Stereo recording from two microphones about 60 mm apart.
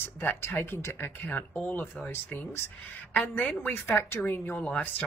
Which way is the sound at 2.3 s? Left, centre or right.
Left.